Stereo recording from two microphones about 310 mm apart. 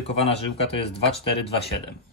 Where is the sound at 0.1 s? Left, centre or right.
Centre.